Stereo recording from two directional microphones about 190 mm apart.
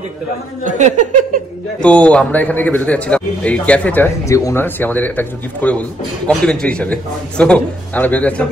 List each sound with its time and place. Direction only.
0.7 s speech: 40° right (ahead or behind)
1.8 s a man's voice: 5° left (ahead or behind)